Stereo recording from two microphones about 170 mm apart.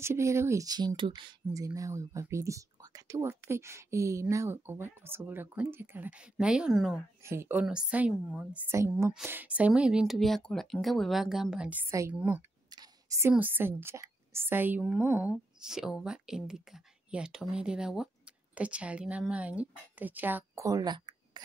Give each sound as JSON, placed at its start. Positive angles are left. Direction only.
{"t": 0.0, "sound": "speech", "side_deg": -15}
{"t": 7.2, "sound": "speech", "side_deg": -15}
{"t": 11.9, "sound": "speech", "side_deg": -15}
{"t": 12.7, "sound": "a sound", "side_deg": -20}
{"t": 13.3, "sound": "a woman's voice", "side_deg": -10}